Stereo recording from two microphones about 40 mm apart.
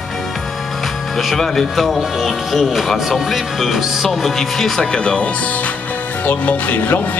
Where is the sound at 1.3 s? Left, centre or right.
Centre.